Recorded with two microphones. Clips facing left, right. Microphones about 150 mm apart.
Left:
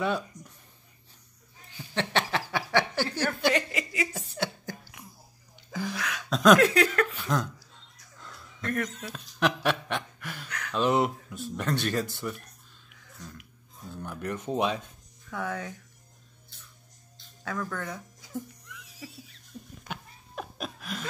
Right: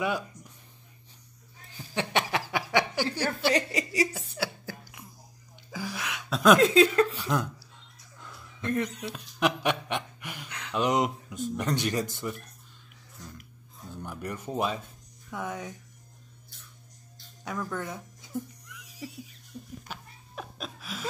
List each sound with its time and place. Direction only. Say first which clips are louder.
2.0 s a sound: even; 15° right (ahead or behind)
3.4 s speech: right 1 dB; 35° right (ahead or behind)
4.4 s cough: left 1 dB; 5° right (ahead or behind)
5.7 s a sound: left 3 dB; 10° right (ahead or behind)
5.9 s speech: left 2 dB; 20° right (ahead or behind)
6.3 s speech: left 1 dB; 10° right (ahead or behind)
6.6 s speech: right 3 dB; 20° right (ahead or behind)
7.2 s speech: even; 10° right (ahead or behind)
8.2 s a sound: right 1 dB; 10° right (ahead or behind)
9.1 s speech: left 1 dB; 10° right (ahead or behind)
14.0 s speech: left 3 dB; 10° right (ahead or behind)
15.3 s speech: left 2 dB; 20° right (ahead or behind)
17.4 s speech: even; 15° right (ahead or behind)
19.9 s laughter: left 3 dB; centre (ahead or behind)